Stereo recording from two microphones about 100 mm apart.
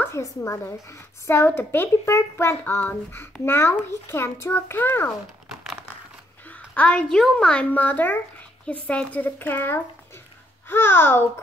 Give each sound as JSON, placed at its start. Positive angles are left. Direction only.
{"t": 0.0, "sound": "a child's voice", "side_deg": 30}
{"t": 6.4, "sound": "a child's voice", "side_deg": 15}